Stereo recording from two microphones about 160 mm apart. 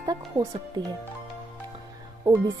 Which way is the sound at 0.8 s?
25° right (ahead or behind).